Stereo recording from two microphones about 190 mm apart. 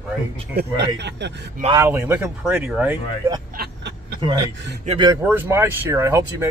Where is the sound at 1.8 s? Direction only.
10° right (ahead or behind).